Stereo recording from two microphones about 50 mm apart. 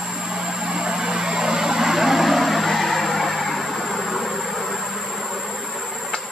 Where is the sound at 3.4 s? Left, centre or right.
Centre.